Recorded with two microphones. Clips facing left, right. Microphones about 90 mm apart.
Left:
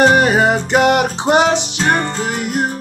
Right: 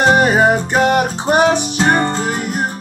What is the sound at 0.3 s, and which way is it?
Music, 5° right (ahead or behind).